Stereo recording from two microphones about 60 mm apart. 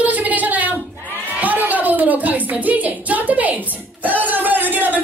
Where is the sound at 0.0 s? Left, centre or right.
Right.